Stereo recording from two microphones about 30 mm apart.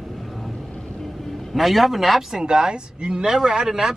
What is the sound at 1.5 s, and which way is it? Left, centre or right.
Speech, centre.